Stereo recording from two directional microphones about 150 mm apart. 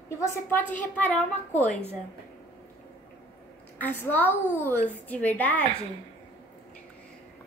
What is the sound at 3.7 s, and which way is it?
A woman's voice, 10° left (ahead or behind).